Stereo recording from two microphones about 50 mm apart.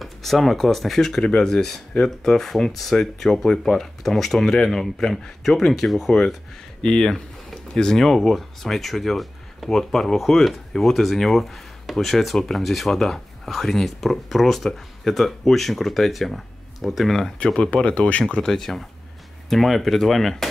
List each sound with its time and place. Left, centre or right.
0.0 s speech: centre
17.4 s speech: centre
18.4 s speech: centre